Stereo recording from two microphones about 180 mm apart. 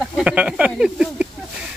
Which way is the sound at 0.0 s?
5° right (ahead or behind).